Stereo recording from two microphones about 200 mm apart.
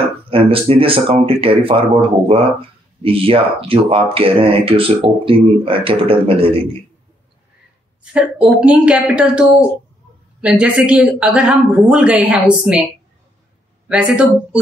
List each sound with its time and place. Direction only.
0.3 s speech: 30° right (ahead or behind)
8.0 s speech: 5° right (ahead or behind)
10.4 s speech: 5° right (ahead or behind)
13.8 s speech: 5° right (ahead or behind)